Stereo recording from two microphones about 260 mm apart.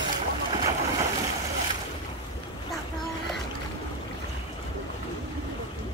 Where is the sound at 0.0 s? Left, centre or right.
Centre.